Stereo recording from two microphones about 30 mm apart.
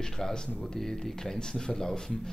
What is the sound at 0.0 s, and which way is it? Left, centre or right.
Speech, left.